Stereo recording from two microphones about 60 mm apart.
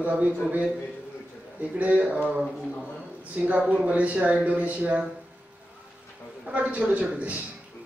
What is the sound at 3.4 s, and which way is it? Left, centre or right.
Speech, right.